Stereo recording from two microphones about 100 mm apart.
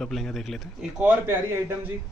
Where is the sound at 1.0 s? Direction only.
15° right (ahead or behind).